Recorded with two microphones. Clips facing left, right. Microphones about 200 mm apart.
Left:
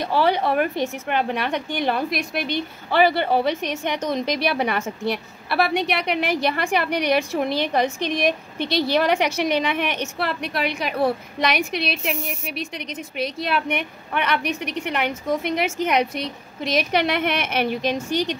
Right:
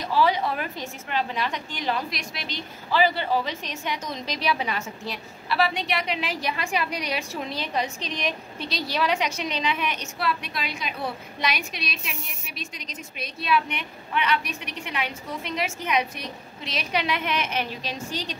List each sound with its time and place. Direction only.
0.0 s a woman's voice: 60° left (ahead or behind)